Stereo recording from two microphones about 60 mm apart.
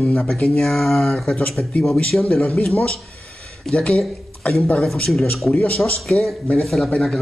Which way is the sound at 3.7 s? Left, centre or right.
Centre.